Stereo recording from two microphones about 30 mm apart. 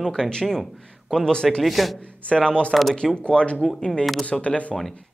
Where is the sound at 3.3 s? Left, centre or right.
Left.